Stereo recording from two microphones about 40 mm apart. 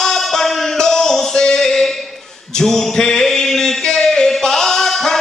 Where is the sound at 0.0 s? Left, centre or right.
Centre.